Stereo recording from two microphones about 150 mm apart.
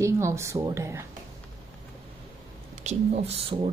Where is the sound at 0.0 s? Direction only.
20° right (ahead or behind).